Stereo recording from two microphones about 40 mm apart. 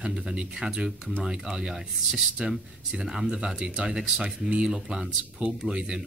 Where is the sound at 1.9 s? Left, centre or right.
Centre; by 4.7 s right.